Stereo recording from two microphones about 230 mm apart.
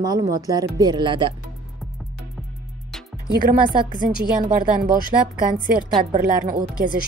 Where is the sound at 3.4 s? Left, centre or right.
Right.